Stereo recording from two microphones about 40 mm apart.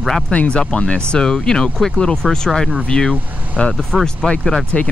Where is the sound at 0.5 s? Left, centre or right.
Left.